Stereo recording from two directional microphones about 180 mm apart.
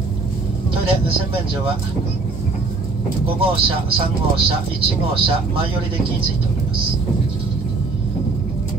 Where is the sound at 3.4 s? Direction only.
30° right (ahead or behind).